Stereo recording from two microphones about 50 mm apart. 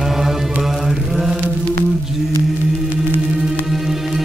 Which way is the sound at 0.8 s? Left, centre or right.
Centre.